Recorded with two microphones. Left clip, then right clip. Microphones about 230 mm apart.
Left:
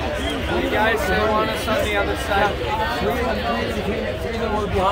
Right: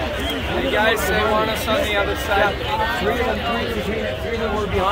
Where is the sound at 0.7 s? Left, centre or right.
Right.